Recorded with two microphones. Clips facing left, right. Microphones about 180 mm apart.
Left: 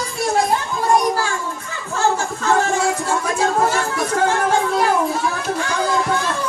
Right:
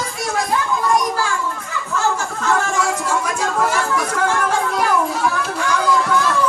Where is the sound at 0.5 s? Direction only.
30° left (ahead or behind).